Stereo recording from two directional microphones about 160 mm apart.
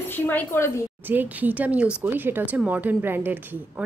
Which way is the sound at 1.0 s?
10° right (ahead or behind).